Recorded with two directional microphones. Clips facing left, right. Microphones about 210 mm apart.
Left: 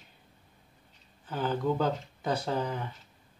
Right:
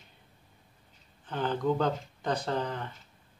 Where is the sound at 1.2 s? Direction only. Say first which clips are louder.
Even; 5° left (ahead or behind).